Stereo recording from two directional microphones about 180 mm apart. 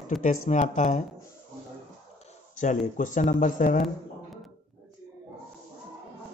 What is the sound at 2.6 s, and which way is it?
Speech, 45° left (ahead or behind).